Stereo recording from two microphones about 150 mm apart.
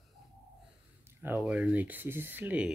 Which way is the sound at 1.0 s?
15° right (ahead or behind).